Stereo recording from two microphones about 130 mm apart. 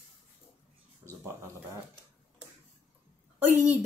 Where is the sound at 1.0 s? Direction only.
20° right (ahead or behind).